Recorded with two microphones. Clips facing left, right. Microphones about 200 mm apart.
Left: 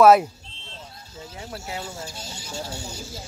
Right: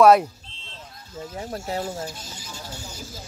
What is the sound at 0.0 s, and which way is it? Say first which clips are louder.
Speech: even; 5° left (ahead or behind).